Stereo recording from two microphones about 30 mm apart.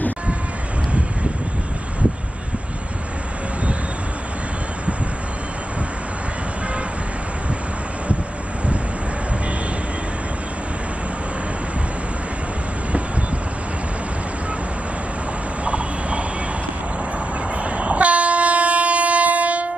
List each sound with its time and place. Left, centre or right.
15.6 s vehicle: right
17.6 s train: right